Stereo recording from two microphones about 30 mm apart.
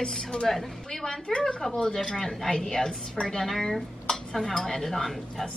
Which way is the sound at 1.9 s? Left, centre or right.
Centre.